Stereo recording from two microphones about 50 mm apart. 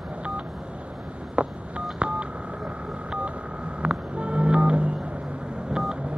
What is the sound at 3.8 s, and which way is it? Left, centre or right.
Music, right.